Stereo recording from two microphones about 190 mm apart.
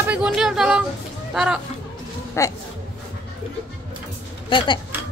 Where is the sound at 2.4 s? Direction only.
15° left (ahead or behind).